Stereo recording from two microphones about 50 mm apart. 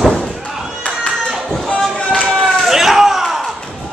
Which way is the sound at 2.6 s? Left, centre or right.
Centre.